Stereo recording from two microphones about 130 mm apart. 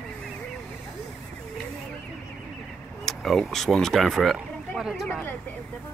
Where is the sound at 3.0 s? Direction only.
Centre (ahead or behind).